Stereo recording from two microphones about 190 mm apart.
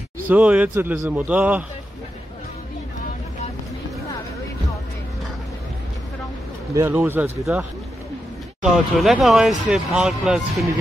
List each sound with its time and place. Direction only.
0.3 s a man's voice: 5° right (ahead or behind)
6.7 s a man's voice: 10° right (ahead or behind)
8.6 s speech: centre (ahead or behind)